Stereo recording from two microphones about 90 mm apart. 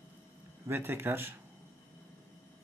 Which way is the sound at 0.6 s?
25° right (ahead or behind).